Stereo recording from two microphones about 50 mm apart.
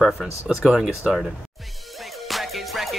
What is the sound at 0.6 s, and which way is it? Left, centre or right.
Speech, right.